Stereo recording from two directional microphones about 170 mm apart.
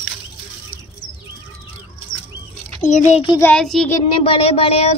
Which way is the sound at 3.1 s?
35° left (ahead or behind).